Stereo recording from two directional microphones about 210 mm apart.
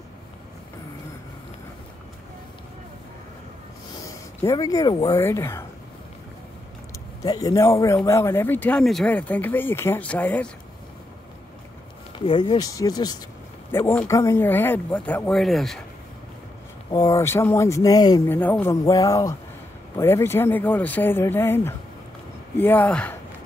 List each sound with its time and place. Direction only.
4.4 s speech: 15° left (ahead or behind)
7.2 s speech: 15° left (ahead or behind)
12.2 s speech: 25° left (ahead or behind); by 15.8 s centre (ahead or behind)
16.9 s speech: 15° left (ahead or behind)